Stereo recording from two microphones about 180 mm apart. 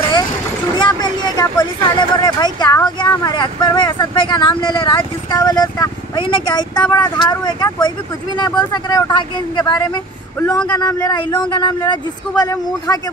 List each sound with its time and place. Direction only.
0.7 s speech: 25° left (ahead or behind)